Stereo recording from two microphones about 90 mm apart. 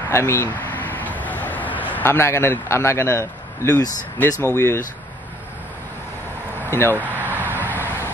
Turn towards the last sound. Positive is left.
turn(degrees=-20)  # may be behind; listen again after turning